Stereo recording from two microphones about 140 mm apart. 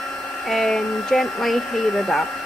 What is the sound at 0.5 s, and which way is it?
Speech, centre (ahead or behind).